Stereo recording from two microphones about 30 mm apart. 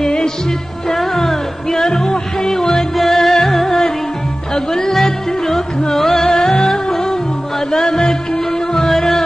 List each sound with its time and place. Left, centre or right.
0.0 s music: left
6.2 s music: centre